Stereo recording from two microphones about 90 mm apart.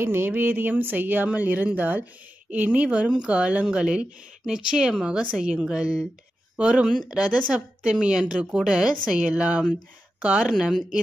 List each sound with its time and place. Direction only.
0.0 s speech: 25° right (ahead or behind); by 11.0 s 5° right (ahead or behind)